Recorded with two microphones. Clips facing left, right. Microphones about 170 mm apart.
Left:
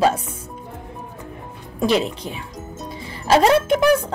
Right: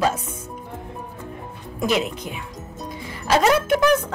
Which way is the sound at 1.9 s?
30° left (ahead or behind).